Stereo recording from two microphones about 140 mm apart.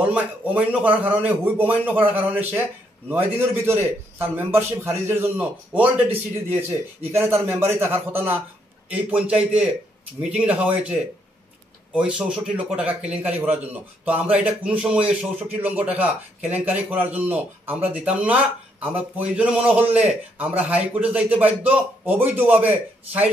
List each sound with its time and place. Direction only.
0.0 s a man's voice: 10° right (ahead or behind)